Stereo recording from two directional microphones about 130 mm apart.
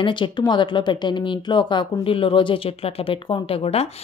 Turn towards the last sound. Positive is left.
turn(degrees=50)  # may be behind; listen again after turning